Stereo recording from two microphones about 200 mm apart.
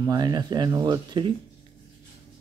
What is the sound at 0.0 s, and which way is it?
Speech, 20° right (ahead or behind).